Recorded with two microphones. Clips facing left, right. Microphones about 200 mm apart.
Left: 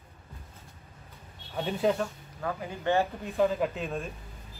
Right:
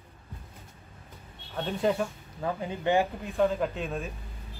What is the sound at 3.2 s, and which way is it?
Speech, centre (ahead or behind).